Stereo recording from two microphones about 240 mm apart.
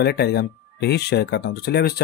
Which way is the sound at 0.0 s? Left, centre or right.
Left.